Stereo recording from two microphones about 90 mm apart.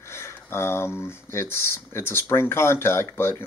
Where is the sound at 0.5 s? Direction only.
25° left (ahead or behind).